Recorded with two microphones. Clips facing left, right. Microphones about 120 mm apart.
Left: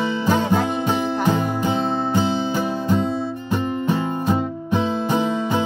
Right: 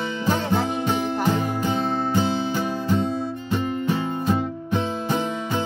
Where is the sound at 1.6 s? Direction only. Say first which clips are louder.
Left 2 dB; 15° left (ahead or behind).